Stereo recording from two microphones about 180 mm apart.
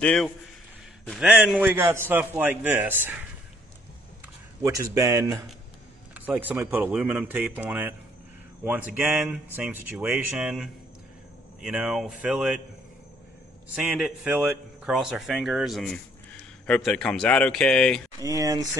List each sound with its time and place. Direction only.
0.0 s a man's voice: 5° left (ahead or behind); by 3.2 s 10° right (ahead or behind)
4.9 s a man's voice: 15° right (ahead or behind)
13.7 s speech: centre (ahead or behind)
18.2 s speech: 20° right (ahead or behind)